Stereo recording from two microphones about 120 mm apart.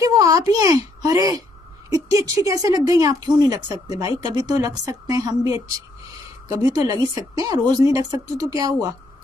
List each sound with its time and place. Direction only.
0.0 s speech: 30° right (ahead or behind)